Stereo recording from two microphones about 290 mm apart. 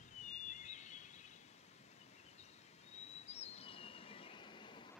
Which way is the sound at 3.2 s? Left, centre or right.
Left.